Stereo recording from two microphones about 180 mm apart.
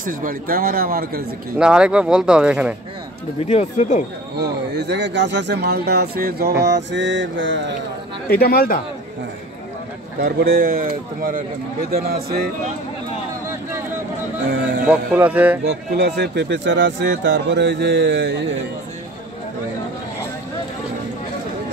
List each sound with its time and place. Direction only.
0.0 s a man's voice: 50° right (ahead or behind)
1.6 s speech: 5° right (ahead or behind)
3.4 s speech: 40° left (ahead or behind)
4.4 s speech: 70° right (ahead or behind)
6.6 s mantra: 80° right
8.3 s a man's voice: 60° left (ahead or behind)
10.2 s a man's voice: 55° right (ahead or behind)
11.9 s speech: 65° right (ahead or behind)
14.5 s mantra: 85° right
14.9 s a man's voice: 10° right (ahead or behind)
15.6 s speech: 70° right (ahead or behind)